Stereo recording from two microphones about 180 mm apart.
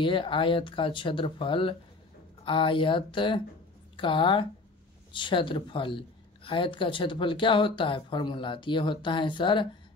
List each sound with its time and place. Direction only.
0.0 s a woman's voice: 25° left (ahead or behind)